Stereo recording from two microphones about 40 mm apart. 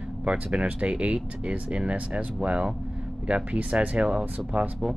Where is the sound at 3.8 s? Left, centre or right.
Right.